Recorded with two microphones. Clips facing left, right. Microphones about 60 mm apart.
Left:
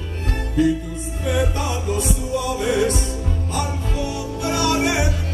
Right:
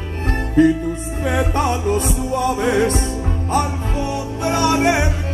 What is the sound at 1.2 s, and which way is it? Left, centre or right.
Music, right.